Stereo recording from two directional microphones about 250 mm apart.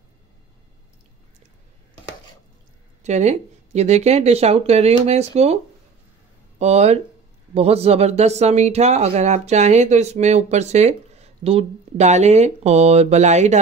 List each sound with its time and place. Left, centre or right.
3.0 s speech: right
6.6 s speech: right